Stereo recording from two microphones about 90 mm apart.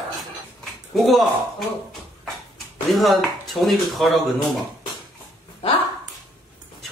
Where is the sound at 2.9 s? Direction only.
Centre (ahead or behind).